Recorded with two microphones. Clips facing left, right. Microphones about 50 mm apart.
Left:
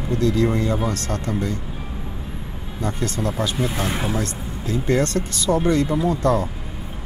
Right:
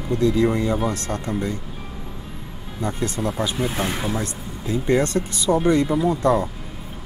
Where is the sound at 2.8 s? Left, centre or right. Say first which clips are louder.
Even; centre.